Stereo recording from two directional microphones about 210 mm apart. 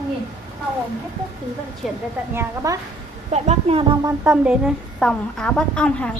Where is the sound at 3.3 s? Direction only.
30° right (ahead or behind).